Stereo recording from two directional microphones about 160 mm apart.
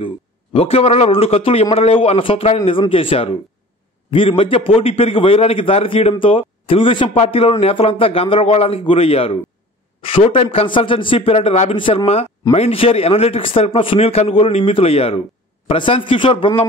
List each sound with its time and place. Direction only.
0.0 s a man's voice: 40° left (ahead or behind)